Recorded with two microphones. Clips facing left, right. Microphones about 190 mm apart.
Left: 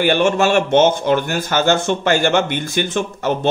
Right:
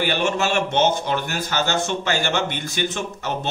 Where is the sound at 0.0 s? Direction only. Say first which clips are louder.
Left 7 dB; 50° left (ahead or behind).